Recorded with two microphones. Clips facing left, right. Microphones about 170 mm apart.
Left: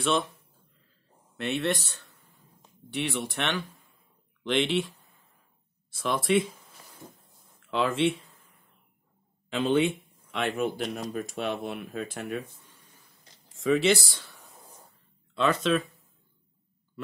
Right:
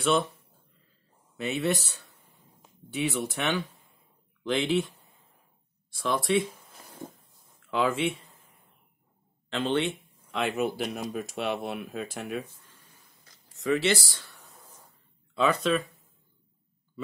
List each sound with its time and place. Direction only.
0.0 s speech: centre (ahead or behind)
1.3 s speech: centre (ahead or behind)
7.7 s speech: 5° right (ahead or behind)
9.5 s speech: 10° left (ahead or behind)
10.3 s speech: centre (ahead or behind)
13.2 s a sound: 25° left (ahead or behind)
14.0 s speech: centre (ahead or behind)
14.4 s a sound: 15° left (ahead or behind)
15.3 s speech: 5° right (ahead or behind)